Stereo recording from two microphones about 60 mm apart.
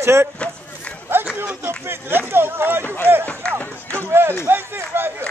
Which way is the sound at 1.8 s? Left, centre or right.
Right.